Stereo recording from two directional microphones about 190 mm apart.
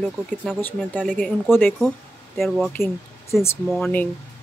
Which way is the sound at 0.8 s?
5° left (ahead or behind).